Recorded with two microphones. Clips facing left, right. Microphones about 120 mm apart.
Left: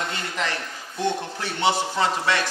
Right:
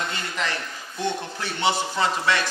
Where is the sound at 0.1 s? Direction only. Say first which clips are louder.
Left 1 dB; 50° left (ahead or behind).